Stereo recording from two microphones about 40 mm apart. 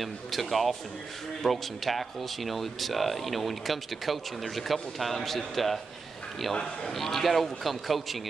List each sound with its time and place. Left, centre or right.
0.0 s speech: centre
6.5 s a man's voice: left
6.9 s speech: centre